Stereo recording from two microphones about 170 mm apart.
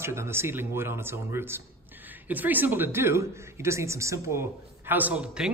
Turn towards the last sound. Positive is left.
turn(degrees=-5)  # may be behind; listen again after turning